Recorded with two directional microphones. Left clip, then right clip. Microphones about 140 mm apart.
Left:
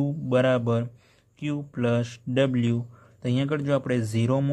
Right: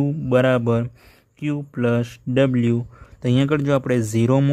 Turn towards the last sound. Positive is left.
turn(degrees=-40)  # may be behind; listen again after turning